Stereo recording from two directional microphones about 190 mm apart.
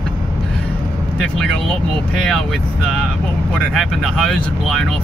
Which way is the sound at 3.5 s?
Centre (ahead or behind).